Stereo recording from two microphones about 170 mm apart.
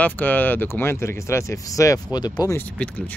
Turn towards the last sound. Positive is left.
turn(degrees=10)  # may be behind; listen again after turning